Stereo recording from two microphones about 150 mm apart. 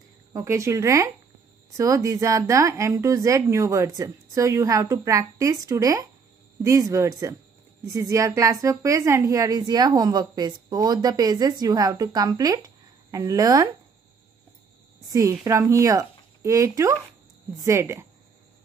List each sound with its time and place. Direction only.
0.3 s a woman's voice: 20° right (ahead or behind)
15.0 s a woman's voice: 25° right (ahead or behind)